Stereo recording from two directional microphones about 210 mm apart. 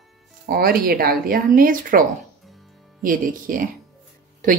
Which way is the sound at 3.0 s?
40° right (ahead or behind).